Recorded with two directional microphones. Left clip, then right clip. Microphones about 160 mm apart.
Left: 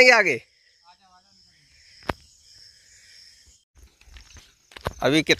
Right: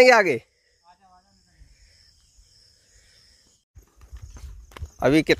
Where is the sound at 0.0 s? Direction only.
30° right (ahead or behind).